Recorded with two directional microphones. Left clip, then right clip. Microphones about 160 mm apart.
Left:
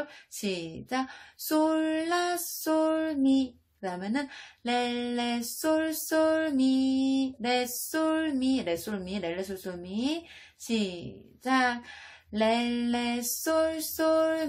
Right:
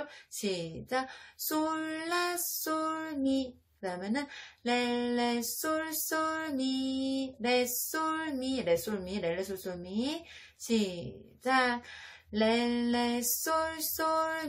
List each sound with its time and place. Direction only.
0.4 s lullaby: 20° left (ahead or behind)
11.4 s lullaby: 20° left (ahead or behind)